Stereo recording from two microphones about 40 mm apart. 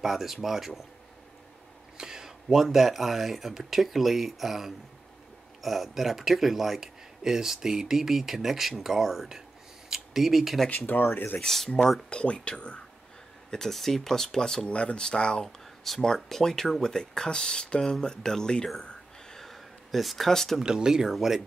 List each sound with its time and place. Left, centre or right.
0.0 s speech: centre
2.0 s speech: centre
10.9 s speech: left
11.3 s speech: centre
12.1 s speech: left
13.5 s speech: centre
14.7 s speech: left
15.4 s speech: centre
19.3 s a sound: centre
20.2 s speech: centre
20.6 s speech: centre